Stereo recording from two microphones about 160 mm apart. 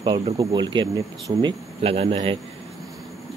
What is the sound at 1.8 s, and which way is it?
Speech, 35° right (ahead or behind).